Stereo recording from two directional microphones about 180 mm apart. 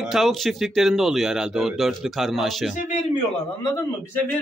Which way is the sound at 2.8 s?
45° left (ahead or behind).